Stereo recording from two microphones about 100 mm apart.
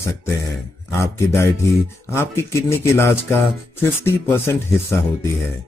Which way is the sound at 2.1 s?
25° left (ahead or behind).